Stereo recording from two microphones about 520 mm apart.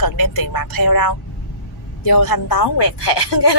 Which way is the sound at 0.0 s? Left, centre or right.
Left.